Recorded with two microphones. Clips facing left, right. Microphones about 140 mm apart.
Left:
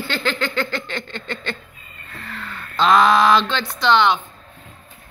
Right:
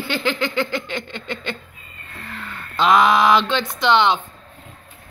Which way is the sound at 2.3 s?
15° right (ahead or behind).